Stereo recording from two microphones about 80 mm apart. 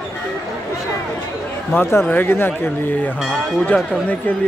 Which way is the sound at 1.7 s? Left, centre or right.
Left.